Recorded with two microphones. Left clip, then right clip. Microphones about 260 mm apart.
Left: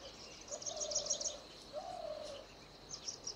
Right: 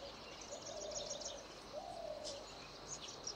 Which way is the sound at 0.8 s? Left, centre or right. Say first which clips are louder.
Left 6 dB; left.